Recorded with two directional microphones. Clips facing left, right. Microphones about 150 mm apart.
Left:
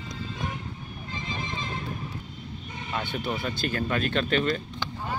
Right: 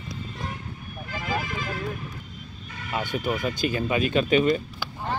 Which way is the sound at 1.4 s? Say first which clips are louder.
Right 2 dB; 25° left (ahead or behind).